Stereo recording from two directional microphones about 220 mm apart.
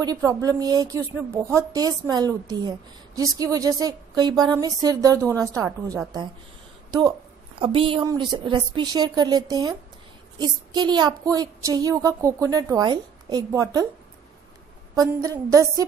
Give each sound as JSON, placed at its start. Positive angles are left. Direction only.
{"t": 0.0, "sound": "a woman's voice", "side_deg": -15}
{"t": 15.0, "sound": "a woman's voice", "side_deg": -15}